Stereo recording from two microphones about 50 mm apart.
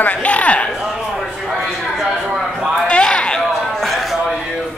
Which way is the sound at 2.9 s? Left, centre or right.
Left.